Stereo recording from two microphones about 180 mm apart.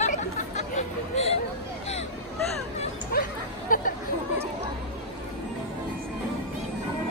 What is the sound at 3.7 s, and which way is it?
Chatter, 50° left (ahead or behind).